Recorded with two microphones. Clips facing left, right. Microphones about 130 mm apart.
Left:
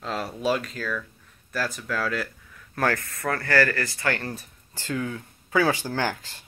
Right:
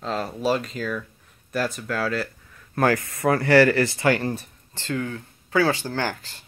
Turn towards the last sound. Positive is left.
turn(degrees=15)  # may be behind; listen again after turning